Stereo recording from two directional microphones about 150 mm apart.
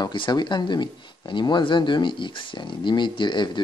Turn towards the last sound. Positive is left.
turn(degrees=30)  # may be behind; listen again after turning